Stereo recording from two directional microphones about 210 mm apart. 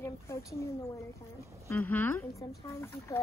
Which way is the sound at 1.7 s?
10° left (ahead or behind).